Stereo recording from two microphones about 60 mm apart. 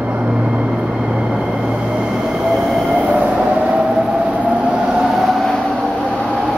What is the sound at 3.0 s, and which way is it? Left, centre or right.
Train, right.